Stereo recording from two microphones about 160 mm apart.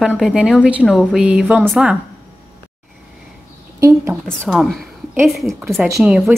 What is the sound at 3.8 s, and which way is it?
Speech, 20° right (ahead or behind).